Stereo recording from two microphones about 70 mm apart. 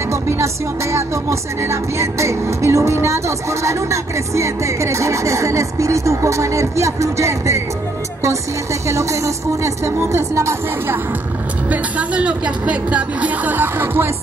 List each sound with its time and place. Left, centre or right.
0.9 s music: right
8.8 s music: right
11.7 s a woman's voice: centre